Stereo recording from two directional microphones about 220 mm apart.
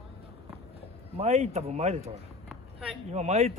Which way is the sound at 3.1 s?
30° right (ahead or behind).